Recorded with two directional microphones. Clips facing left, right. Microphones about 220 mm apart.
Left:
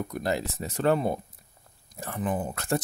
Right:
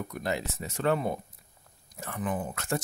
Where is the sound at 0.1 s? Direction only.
35° left (ahead or behind).